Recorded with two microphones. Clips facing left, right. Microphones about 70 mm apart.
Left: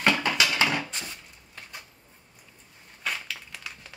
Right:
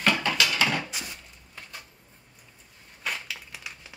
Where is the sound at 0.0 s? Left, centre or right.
Centre.